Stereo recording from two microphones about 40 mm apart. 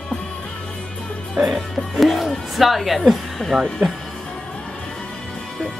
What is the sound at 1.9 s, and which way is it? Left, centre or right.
Music, centre.